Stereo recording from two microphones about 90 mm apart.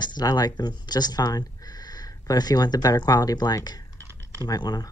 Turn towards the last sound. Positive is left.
turn(degrees=45)  # may be behind; listen again after turning